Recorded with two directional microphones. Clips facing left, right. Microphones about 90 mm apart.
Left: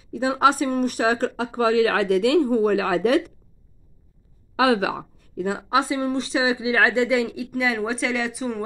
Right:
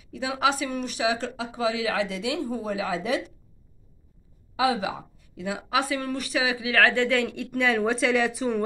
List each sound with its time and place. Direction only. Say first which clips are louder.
0.0 s speech: left 6 dB; 35° left (ahead or behind); by 3.3 s 60° left (ahead or behind)
4.6 s speech: left 5 dB; 65° left (ahead or behind)
5.3 s speech: left 5 dB; 40° left (ahead or behind); by 8.6 s centre (ahead or behind)